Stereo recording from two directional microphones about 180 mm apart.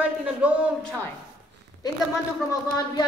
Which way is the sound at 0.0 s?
5° right (ahead or behind).